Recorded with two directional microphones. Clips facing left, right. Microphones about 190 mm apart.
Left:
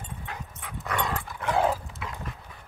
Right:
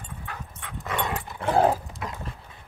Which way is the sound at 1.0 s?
20° right (ahead or behind).